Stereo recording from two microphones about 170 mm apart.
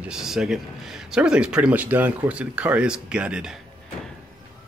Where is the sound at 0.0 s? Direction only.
5° right (ahead or behind).